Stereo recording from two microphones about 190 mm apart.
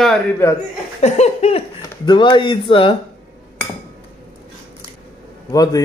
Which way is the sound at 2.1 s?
25° left (ahead or behind).